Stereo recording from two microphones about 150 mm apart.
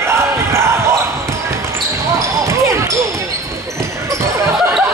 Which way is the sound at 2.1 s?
20° right (ahead or behind).